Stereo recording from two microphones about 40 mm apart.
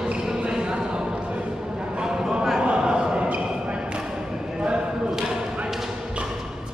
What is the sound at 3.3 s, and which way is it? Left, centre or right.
Basketball bounce, right.